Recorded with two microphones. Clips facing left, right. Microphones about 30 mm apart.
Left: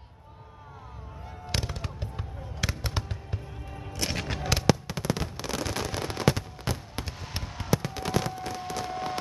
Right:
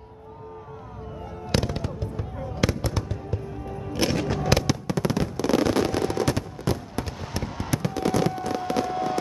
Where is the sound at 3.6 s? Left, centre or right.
Centre.